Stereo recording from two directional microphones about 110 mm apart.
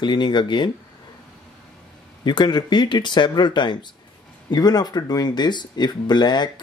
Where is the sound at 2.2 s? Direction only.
40° left (ahead or behind).